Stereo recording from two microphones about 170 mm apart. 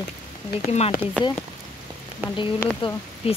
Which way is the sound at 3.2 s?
35° left (ahead or behind).